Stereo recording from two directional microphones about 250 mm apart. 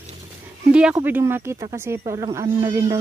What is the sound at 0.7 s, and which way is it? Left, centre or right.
Speech, centre.